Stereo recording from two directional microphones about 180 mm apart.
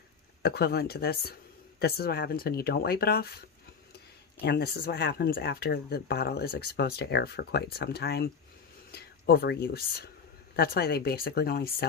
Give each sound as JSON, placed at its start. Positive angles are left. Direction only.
{"t": 0.4, "sound": "speech", "side_deg": 65}